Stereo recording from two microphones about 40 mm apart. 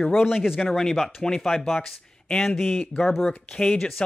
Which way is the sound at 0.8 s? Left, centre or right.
Centre.